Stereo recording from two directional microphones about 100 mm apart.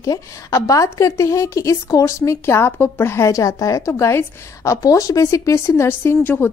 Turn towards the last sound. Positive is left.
turn(degrees=20)  # may be behind; listen again after turning